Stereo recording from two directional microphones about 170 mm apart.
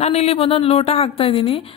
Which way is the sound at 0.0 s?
40° left (ahead or behind).